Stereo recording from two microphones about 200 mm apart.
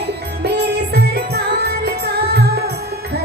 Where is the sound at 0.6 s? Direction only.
55° right (ahead or behind).